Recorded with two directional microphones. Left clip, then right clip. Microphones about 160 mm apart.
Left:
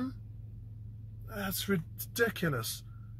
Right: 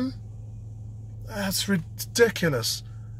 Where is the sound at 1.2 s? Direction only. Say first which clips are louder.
Right 8 dB; 15° right (ahead or behind).